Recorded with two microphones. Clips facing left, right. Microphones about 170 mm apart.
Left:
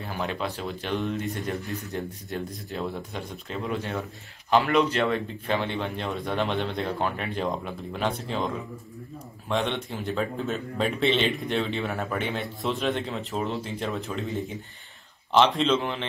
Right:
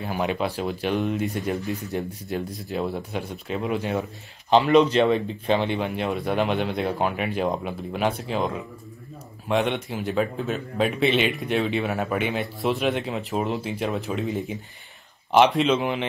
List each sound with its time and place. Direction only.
0.0 s speech: 15° right (ahead or behind)
9.5 s speech: 10° right (ahead or behind)